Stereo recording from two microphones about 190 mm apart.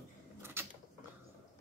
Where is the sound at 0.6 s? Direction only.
10° right (ahead or behind).